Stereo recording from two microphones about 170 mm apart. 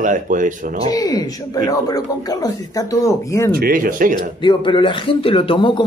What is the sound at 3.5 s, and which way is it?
Speech, 55° right (ahead or behind).